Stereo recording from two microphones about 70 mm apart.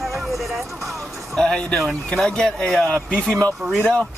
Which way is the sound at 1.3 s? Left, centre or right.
Centre.